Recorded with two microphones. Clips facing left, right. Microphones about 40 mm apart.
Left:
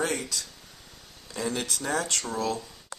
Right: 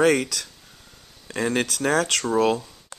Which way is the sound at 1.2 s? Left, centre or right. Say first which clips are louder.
Right 7 dB; right.